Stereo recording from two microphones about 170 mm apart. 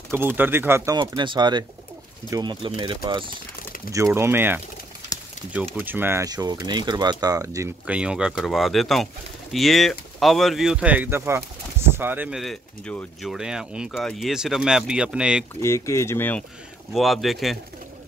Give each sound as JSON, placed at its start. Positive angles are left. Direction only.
{"t": 0.1, "sound": "speech", "side_deg": -15}
{"t": 0.9, "sound": "speech", "side_deg": -25}
{"t": 3.9, "sound": "speech", "side_deg": -15}
{"t": 5.8, "sound": "speech", "side_deg": -10}
{"t": 7.8, "sound": "speech", "side_deg": -5}
{"t": 15.6, "sound": "speech", "side_deg": 15}
{"t": 16.9, "sound": "speech", "side_deg": 0}